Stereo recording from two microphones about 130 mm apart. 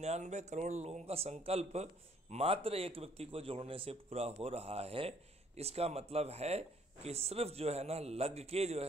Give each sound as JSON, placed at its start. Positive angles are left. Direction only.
{"t": 0.0, "sound": "a man's voice", "side_deg": -60}